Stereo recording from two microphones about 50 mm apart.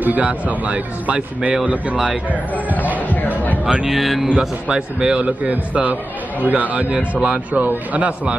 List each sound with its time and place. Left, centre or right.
0.0 s a man's voice: right
3.8 s speech: centre
4.4 s a man's voice: centre